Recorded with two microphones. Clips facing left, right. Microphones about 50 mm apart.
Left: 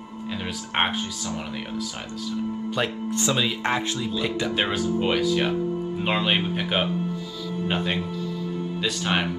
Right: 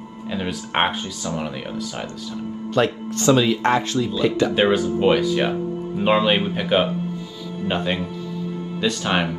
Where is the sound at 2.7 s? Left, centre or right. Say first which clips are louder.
Right 8 dB; centre.